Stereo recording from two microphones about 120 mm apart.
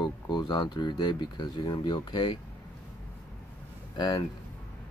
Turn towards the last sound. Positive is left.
turn(degrees=40)  # may be behind; listen again after turning